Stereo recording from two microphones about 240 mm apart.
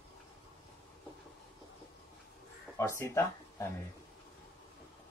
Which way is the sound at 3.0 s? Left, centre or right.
Centre.